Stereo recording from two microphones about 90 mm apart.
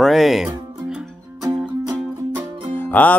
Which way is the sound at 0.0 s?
Centre (ahead or behind).